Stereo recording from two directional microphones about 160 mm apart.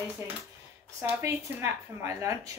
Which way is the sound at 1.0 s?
15° right (ahead or behind).